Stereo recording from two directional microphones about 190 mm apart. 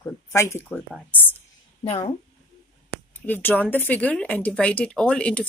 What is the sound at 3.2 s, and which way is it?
Speech, 10° left (ahead or behind).